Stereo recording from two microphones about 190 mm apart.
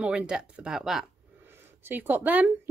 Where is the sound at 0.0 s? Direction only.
5° right (ahead or behind).